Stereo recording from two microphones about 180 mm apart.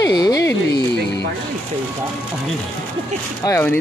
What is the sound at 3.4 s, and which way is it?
Speech, 15° left (ahead or behind).